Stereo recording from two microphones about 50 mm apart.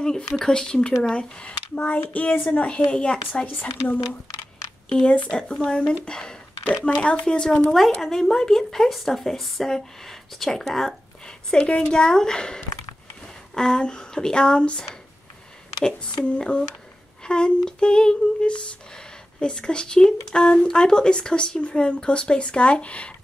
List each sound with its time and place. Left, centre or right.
0.5 s a woman's voice: centre
3.4 s speech: left
4.8 s a woman's voice: centre
8.0 s speech: centre
11.5 s a woman's voice: left